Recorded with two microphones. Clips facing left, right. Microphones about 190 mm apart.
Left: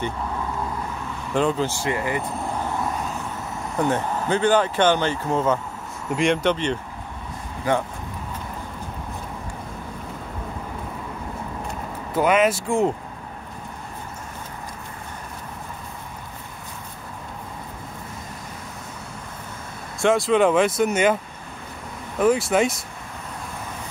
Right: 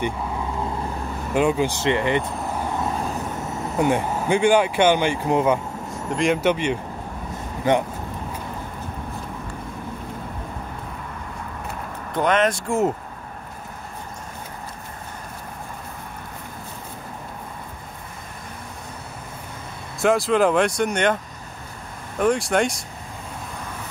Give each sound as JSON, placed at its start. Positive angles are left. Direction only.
{"t": 1.3, "sound": "speech", "side_deg": -10}
{"t": 3.7, "sound": "speech", "side_deg": -10}
{"t": 6.1, "sound": "speech", "side_deg": -5}
{"t": 7.7, "sound": "speech", "side_deg": -20}
{"t": 12.1, "sound": "speech", "side_deg": 5}
{"t": 20.0, "sound": "speech", "side_deg": 0}
{"t": 22.2, "sound": "speech", "side_deg": 0}